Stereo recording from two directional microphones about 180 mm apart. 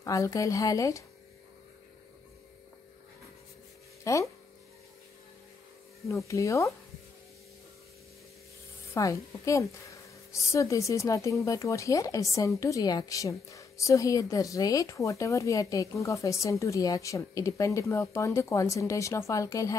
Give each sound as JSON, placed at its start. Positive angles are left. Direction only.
{"t": 0.0, "sound": "a woman's voice", "side_deg": 20}
{"t": 4.0, "sound": "speech", "side_deg": 15}
{"t": 6.0, "sound": "a woman's voice", "side_deg": 15}
{"t": 8.9, "sound": "a woman's voice", "side_deg": 15}